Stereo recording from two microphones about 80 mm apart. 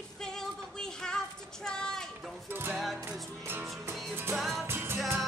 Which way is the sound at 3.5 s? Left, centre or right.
Right.